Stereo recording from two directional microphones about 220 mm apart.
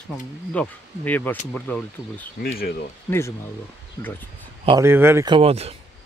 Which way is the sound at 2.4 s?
45° left (ahead or behind).